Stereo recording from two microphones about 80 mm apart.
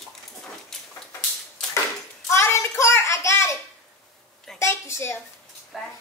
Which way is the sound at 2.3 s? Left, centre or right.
Left.